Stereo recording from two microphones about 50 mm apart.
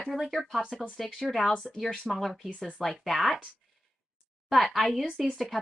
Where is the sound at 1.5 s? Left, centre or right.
Centre.